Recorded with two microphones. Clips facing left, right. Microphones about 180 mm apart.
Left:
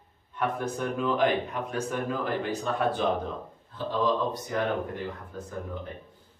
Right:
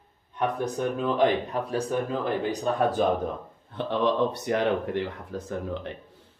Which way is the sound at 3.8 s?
70° right (ahead or behind).